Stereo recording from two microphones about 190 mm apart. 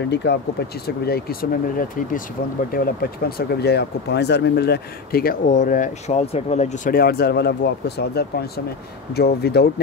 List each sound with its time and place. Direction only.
0.1 s speech: 60° left (ahead or behind)